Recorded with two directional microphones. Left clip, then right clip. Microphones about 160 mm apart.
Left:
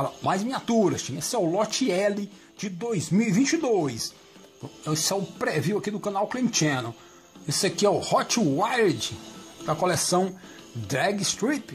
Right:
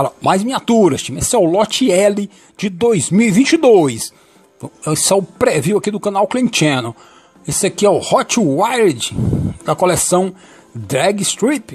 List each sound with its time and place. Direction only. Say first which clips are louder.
0.0 s speech: right 12 dB; 50° right (ahead or behind)